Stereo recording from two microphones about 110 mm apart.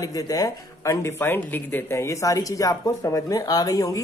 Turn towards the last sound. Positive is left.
turn(degrees=35)  # may be behind; listen again after turning